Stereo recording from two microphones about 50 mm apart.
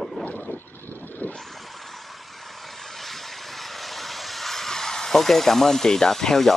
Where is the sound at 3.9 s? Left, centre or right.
Centre.